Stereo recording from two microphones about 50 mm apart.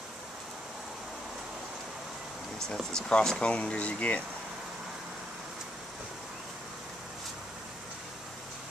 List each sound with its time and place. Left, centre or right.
2.6 s speech: centre